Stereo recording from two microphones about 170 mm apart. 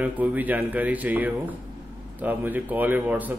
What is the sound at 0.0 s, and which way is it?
A man's voice, 10° right (ahead or behind).